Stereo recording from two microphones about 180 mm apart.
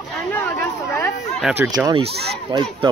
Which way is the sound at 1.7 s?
20° right (ahead or behind).